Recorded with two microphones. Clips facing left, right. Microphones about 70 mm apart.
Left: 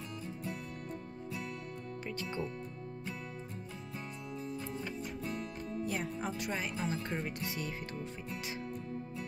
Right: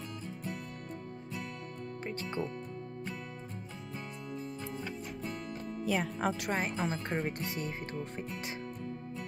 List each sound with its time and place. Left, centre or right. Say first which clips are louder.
2.0 s speech: right 2 dB; right
5.9 s speech: right 5 dB; right
6.6 s speech: right 3 dB; right